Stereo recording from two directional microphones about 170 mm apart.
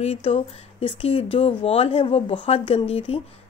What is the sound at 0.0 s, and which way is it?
Speech, 40° left (ahead or behind).